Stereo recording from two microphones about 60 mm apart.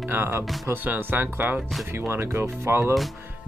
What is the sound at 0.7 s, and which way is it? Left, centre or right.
Speech, right.